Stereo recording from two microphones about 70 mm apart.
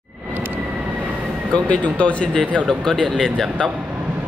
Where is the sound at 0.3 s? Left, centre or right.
Right.